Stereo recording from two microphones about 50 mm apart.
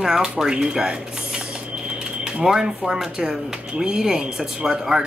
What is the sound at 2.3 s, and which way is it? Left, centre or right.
Speech, centre.